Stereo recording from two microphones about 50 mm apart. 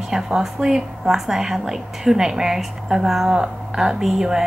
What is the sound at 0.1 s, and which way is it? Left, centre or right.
A woman's voice, centre.